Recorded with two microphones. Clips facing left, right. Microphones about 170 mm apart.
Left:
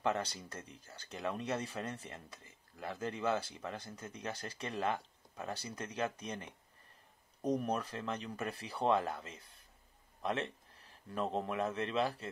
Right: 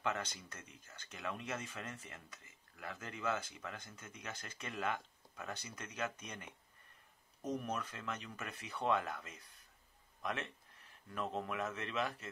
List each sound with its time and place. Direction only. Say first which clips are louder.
0.0 s speech: left 5 dB; 35° left (ahead or behind)